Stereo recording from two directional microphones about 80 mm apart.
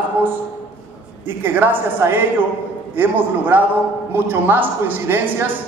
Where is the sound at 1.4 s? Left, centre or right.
Right.